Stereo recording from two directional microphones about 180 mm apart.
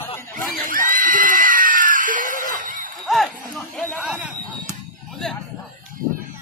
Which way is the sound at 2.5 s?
50° right (ahead or behind).